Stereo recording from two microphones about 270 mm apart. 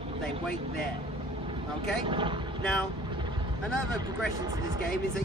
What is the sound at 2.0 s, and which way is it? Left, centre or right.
Speech, centre.